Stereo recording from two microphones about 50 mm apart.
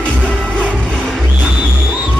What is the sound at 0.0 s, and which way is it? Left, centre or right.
Music, left.